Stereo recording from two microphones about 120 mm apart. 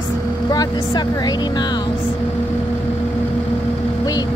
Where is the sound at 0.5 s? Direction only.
35° left (ahead or behind).